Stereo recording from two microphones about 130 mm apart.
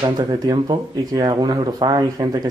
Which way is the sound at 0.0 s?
35° right (ahead or behind).